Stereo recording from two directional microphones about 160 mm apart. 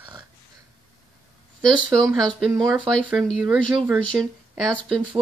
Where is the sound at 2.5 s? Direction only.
20° right (ahead or behind).